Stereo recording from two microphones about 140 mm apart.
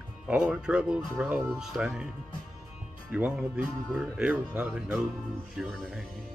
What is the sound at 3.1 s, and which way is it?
Speech, 5° right (ahead or behind).